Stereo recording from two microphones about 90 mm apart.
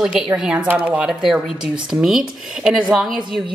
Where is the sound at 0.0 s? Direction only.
5° right (ahead or behind).